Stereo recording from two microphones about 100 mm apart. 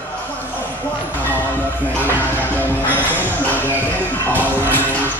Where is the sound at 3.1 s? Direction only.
20° left (ahead or behind).